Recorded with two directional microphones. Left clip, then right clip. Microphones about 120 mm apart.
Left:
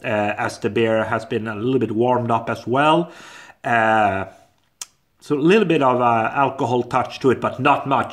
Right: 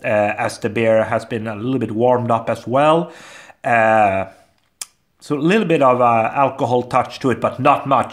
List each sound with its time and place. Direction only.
0.0 s speech: 25° right (ahead or behind)
4.8 s a sound: 25° right (ahead or behind)
5.3 s speech: 25° right (ahead or behind)